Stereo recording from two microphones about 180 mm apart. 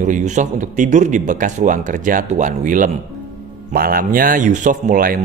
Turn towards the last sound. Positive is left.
turn(degrees=-50)  # may be behind; listen again after turning